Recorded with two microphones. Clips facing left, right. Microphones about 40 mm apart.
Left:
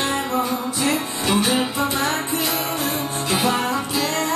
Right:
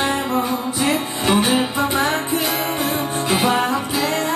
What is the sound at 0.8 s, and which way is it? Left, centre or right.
Music, right.